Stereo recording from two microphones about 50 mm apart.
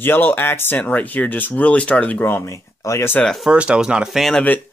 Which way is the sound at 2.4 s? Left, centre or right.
Left.